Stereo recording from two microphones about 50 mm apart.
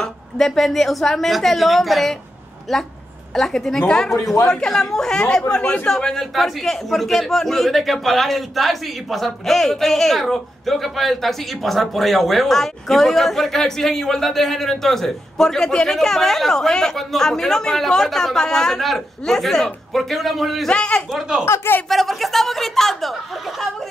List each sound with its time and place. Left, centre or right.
0.0 s a man's voice: centre
20.7 s a man's voice: left
21.5 s speech: left
21.8 s a man's voice: centre